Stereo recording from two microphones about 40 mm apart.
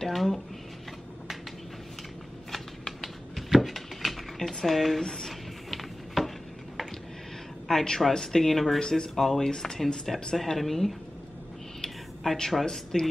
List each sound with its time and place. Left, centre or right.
0.0 s speech: centre
2.5 s a sound: centre
5.0 s speech: centre
5.7 s a sound: centre
7.6 s speech: centre
12.4 s speech: centre